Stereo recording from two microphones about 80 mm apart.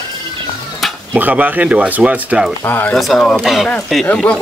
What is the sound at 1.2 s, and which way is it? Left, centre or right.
Speech, right.